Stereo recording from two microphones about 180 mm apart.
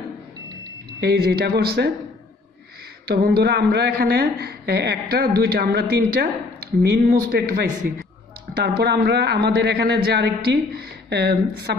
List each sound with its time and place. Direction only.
1.0 s a man's voice: 60° right (ahead or behind)
3.1 s a man's voice: 55° right (ahead or behind)